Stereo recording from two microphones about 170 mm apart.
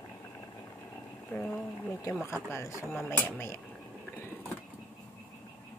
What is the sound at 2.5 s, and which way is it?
Speech, 15° left (ahead or behind).